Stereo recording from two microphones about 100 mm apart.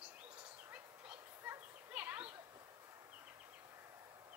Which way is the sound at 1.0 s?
15° right (ahead or behind).